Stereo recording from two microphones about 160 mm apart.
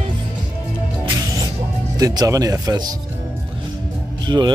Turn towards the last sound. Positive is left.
turn(degrees=-25)  # may be behind; listen again after turning